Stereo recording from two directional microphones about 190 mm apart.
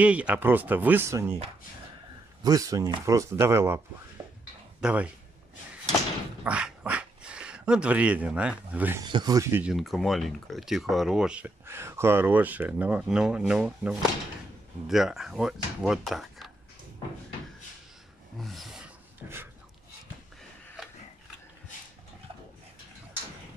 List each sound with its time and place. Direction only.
0.0 s speech: 5° right (ahead or behind)
2.4 s speech: 20° right (ahead or behind)
4.8 s speech: 5° right (ahead or behind)
6.4 s speech: 5° right (ahead or behind)
9.0 s speech: 20° right (ahead or behind); by 16.5 s centre (ahead or behind)
18.4 s a sound: centre (ahead or behind)
19.2 s a sound: 10° right (ahead or behind)